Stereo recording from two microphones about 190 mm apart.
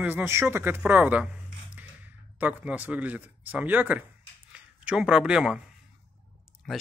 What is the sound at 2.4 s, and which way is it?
Speech, 10° right (ahead or behind).